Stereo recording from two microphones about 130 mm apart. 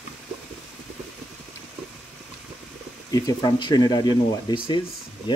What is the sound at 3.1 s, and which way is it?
Speech, 30° left (ahead or behind).